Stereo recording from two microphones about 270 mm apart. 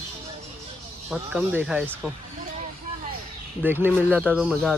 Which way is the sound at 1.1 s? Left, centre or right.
Centre.